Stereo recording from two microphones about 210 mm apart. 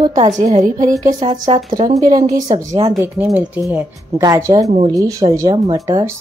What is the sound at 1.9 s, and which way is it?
Speech, 15° right (ahead or behind).